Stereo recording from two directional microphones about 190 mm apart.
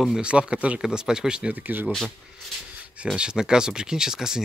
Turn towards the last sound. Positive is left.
turn(degrees=-5)  # may be behind; listen again after turning